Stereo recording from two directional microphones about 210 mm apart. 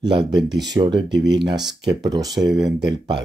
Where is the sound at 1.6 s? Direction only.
Centre (ahead or behind).